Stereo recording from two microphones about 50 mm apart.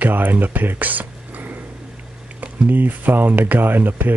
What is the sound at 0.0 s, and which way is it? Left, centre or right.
Speech, right.